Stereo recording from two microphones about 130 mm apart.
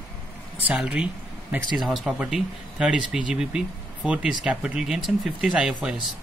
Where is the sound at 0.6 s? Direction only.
5° right (ahead or behind).